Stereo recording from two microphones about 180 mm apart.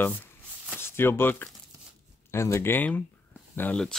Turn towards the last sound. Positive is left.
turn(degrees=5)  # may be behind; listen again after turning